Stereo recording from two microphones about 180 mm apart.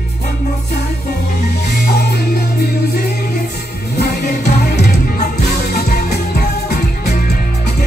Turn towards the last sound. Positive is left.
turn(degrees=60)  # may be behind; listen again after turning